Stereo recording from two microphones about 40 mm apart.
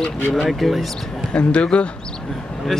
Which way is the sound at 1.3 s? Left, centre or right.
Left.